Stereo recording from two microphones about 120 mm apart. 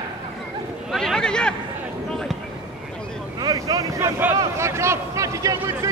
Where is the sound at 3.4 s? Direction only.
30° right (ahead or behind).